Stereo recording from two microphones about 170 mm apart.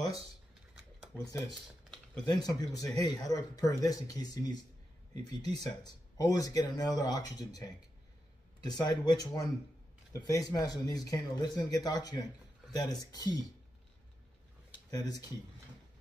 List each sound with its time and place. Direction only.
2.2 s speech: 25° left (ahead or behind)
14.9 s speech: 20° left (ahead or behind)